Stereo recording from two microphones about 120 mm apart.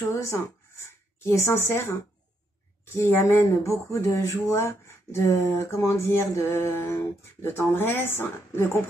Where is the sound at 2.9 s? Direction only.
20° left (ahead or behind).